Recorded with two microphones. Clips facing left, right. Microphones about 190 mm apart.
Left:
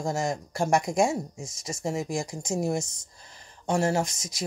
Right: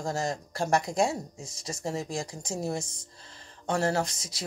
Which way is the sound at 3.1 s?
15° left (ahead or behind).